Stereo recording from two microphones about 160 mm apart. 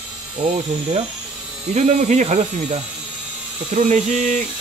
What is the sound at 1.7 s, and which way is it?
Speech, 45° right (ahead or behind).